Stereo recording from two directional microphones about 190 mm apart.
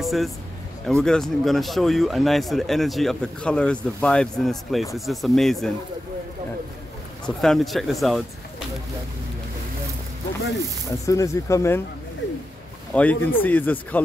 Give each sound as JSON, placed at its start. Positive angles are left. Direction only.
{"t": 0.0, "sound": "speech", "side_deg": 0}
{"t": 7.2, "sound": "speech", "side_deg": 0}
{"t": 10.9, "sound": "speech", "side_deg": 15}
{"t": 12.9, "sound": "speech", "side_deg": 10}